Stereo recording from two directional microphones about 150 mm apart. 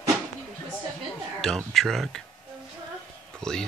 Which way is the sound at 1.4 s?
Centre (ahead or behind).